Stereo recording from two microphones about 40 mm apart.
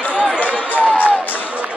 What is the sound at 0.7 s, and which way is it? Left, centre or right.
Run, left.